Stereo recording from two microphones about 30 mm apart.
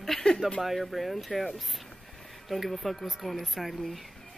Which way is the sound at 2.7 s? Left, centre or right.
Centre.